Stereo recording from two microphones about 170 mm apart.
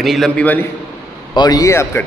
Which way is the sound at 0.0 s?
Centre (ahead or behind).